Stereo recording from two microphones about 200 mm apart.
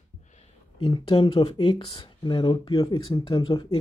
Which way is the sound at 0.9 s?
25° left (ahead or behind).